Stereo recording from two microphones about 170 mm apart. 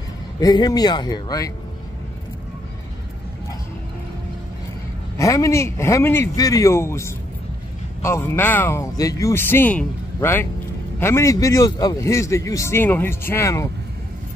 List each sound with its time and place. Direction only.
0.4 s speech: 20° left (ahead or behind)
5.1 s a man's voice: 20° left (ahead or behind)